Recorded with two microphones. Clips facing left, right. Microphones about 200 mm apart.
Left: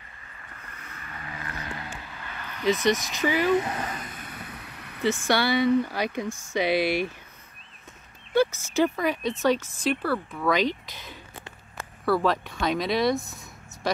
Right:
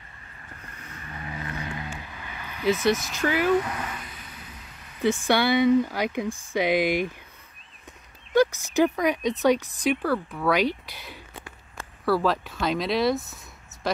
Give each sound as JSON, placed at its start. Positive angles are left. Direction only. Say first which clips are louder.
{"t": 1.0, "sound": "vehicle", "louder": "right 3 dB", "side_deg": -25}
{"t": 1.6, "sound": "a sound", "louder": "right 2 dB", "side_deg": -15}
{"t": 2.7, "sound": "speech", "louder": "right 1 dB", "side_deg": 15}
{"t": 3.6, "sound": "vehicle", "louder": "left 2 dB", "side_deg": 35}
{"t": 5.0, "sound": "speech", "louder": "right 2 dB", "side_deg": -15}
{"t": 6.2, "sound": "speech", "louder": "right 2 dB", "side_deg": -30}
{"t": 6.5, "sound": "speech", "louder": "right 1 dB", "side_deg": -15}
{"t": 8.3, "sound": "speech", "louder": "right 2 dB", "side_deg": -15}